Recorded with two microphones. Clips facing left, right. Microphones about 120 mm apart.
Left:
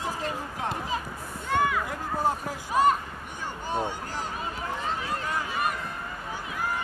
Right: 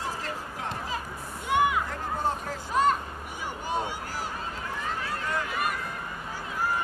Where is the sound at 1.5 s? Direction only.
15° right (ahead or behind).